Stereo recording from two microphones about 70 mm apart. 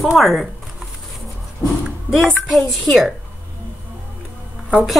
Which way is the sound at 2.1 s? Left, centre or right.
Right.